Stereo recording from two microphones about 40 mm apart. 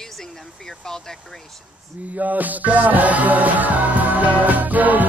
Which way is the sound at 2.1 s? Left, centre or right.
Right.